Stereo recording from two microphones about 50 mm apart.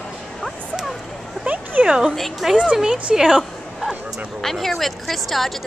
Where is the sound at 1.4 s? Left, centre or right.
Right.